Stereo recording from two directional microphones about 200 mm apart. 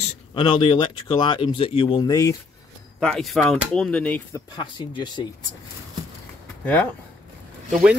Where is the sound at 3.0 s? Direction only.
Centre (ahead or behind).